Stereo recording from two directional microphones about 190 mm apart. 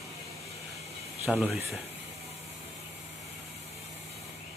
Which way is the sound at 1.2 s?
5° right (ahead or behind).